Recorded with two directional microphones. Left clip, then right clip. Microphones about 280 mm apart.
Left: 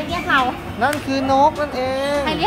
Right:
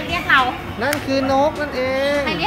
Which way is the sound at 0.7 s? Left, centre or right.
Centre.